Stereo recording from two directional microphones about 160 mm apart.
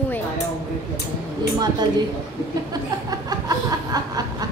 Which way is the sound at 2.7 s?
25° right (ahead or behind).